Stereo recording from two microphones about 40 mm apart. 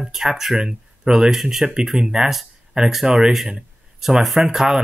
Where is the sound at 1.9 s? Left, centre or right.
Centre.